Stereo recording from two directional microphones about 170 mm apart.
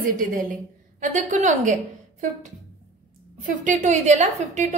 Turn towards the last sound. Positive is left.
turn(degrees=-45)  # may be behind; listen again after turning